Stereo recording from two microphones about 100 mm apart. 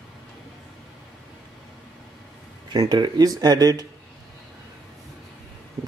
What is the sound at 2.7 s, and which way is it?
Speech, 45° right (ahead or behind).